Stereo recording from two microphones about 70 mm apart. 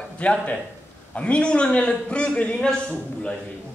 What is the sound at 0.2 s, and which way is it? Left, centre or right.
A man's voice, centre.